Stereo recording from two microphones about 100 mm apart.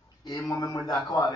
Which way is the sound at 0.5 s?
40° left (ahead or behind).